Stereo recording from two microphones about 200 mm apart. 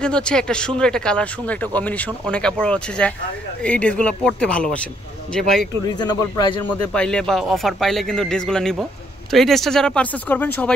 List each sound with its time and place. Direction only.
0.0 s speech: 5° left (ahead or behind)
5.9 s speech: 20° left (ahead or behind)
6.7 s speech: 5° left (ahead or behind)